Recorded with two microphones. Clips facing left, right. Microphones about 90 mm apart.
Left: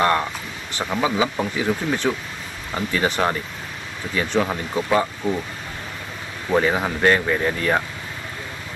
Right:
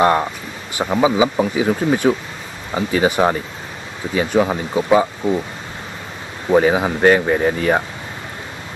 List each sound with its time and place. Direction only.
0.0 s speech: 20° right (ahead or behind)
6.5 s speech: 15° right (ahead or behind)